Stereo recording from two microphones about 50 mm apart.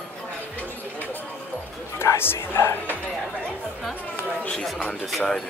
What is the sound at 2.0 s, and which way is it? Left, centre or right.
Speech, left.